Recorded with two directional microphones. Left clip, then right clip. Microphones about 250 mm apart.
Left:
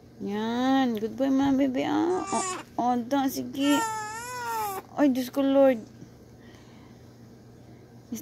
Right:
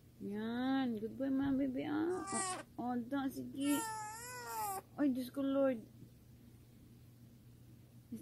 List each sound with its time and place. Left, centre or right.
0.3 s speech: centre
2.2 s baby cry: right
2.7 s speech: centre
3.8 s baby cry: centre
4.9 s speech: centre